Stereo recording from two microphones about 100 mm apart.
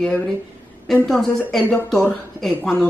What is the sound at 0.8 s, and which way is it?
Speech, 5° left (ahead or behind).